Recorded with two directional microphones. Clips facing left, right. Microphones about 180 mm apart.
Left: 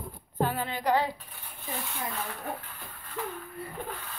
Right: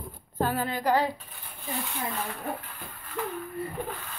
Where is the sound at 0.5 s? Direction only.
40° right (ahead or behind).